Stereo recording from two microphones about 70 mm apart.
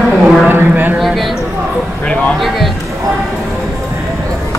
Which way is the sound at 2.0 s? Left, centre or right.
Centre.